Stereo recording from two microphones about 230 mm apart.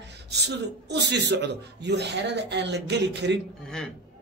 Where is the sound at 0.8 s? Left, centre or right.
Right.